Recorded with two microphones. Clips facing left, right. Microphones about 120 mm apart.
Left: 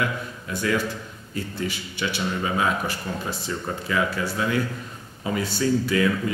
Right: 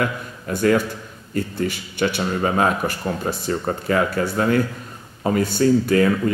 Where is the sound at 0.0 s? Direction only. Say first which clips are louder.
Right 3 dB; 50° right (ahead or behind).